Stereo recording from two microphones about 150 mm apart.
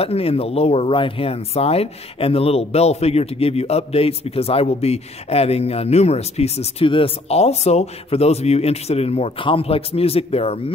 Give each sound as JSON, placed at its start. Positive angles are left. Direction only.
{"t": 0.0, "sound": "speech", "side_deg": 40}